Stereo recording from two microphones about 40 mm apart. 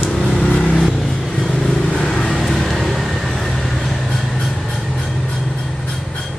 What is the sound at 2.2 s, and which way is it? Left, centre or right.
Vehicle, centre.